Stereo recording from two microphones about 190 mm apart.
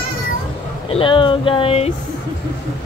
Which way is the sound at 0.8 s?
30° left (ahead or behind).